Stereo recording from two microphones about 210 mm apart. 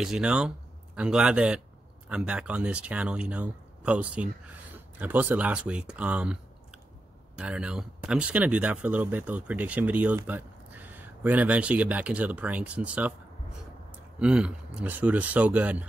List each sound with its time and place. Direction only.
0.0 s speech: 5° right (ahead or behind)
7.3 s speech: 5° right (ahead or behind)
14.2 s speech: 5° right (ahead or behind)